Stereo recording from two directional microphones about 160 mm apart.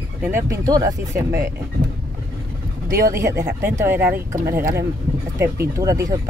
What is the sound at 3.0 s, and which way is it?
Speech, 15° right (ahead or behind).